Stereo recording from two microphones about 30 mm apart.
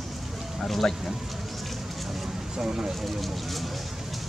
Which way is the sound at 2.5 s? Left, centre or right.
Centre.